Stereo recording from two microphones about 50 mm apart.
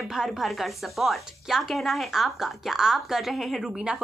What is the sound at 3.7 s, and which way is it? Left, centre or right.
Speech, centre.